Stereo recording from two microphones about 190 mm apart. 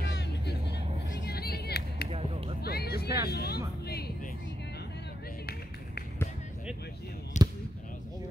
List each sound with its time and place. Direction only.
1.2 s vehicle: 55° left (ahead or behind)
2.0 s finger snapping: 30° right (ahead or behind)
2.6 s music: 55° left (ahead or behind)
7.3 s basketball bounce: 40° left (ahead or behind)